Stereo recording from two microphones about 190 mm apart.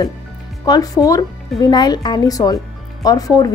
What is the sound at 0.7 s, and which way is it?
A woman's voice, 20° left (ahead or behind).